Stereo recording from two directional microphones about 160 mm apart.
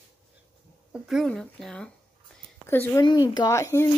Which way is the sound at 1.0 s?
Centre (ahead or behind).